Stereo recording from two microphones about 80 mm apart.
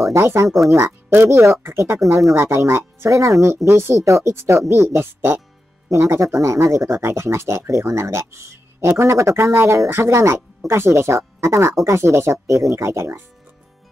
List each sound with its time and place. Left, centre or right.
0.1 s speech: right